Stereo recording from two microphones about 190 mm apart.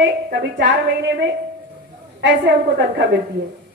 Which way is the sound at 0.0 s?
65° right (ahead or behind).